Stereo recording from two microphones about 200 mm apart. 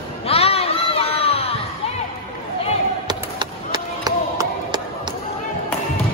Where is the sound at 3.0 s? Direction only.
20° right (ahead or behind).